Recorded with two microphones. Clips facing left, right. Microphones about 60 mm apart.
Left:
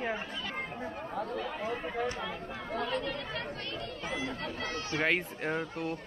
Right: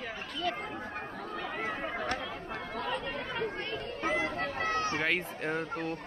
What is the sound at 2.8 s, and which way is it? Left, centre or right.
Speech, centre.